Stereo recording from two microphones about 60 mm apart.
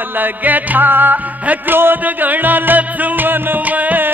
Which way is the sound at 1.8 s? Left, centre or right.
Right.